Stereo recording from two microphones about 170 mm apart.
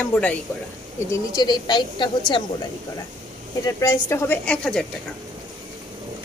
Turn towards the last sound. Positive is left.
turn(degrees=5)  # may be behind; listen again after turning